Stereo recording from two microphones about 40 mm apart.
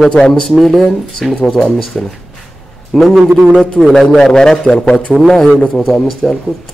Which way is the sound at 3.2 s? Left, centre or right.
Right.